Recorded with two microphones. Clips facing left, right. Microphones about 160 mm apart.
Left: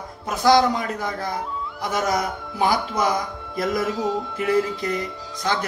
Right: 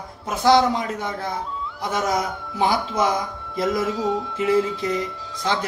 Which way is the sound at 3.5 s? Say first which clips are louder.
Right 1 dB; 25° right (ahead or behind).